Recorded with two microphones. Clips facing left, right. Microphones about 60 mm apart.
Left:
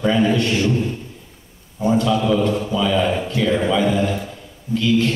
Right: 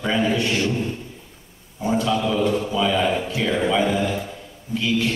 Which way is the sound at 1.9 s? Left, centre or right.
Centre.